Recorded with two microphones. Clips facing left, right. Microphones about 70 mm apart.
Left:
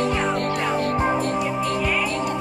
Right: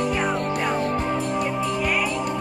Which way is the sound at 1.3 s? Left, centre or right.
Centre.